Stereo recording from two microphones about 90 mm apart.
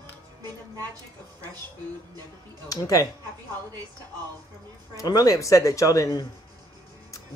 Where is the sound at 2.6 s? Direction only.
40° left (ahead or behind).